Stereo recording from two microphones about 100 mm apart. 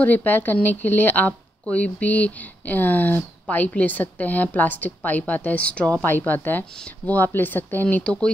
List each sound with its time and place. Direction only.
0.0 s speech: 15° left (ahead or behind)